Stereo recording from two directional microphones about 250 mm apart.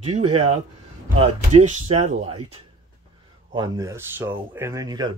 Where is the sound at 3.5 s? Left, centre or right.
Centre.